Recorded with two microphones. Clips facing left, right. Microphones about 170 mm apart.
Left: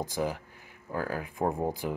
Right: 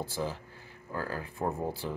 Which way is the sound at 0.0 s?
15° left (ahead or behind).